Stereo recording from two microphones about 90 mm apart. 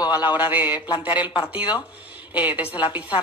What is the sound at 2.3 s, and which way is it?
Speech, 20° right (ahead or behind).